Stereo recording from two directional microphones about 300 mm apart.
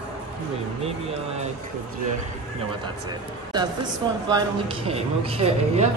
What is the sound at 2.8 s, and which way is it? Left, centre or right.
A man's voice, centre.